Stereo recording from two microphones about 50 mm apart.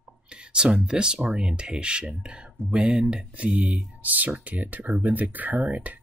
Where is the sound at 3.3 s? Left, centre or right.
Right.